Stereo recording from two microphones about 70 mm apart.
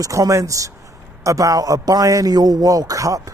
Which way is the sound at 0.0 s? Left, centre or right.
Right.